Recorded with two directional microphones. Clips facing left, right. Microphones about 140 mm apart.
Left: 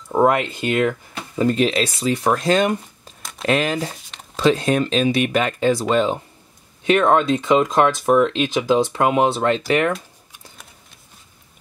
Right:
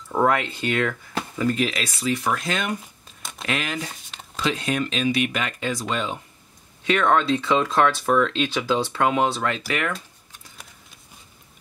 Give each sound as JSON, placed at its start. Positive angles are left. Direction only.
{"t": 0.1, "sound": "speech", "side_deg": 20}
{"t": 1.4, "sound": "speech", "side_deg": 30}
{"t": 3.2, "sound": "a sound", "side_deg": 0}
{"t": 3.4, "sound": "speech", "side_deg": 35}
{"t": 3.9, "sound": "a sound", "side_deg": 0}
{"t": 4.4, "sound": "speech", "side_deg": 35}
{"t": 6.9, "sound": "speech", "side_deg": 25}